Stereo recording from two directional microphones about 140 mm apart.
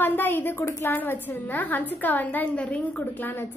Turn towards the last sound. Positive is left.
turn(degrees=15)  # may be behind; listen again after turning